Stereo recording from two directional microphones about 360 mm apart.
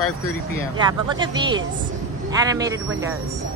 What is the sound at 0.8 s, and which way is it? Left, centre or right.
Speech, centre.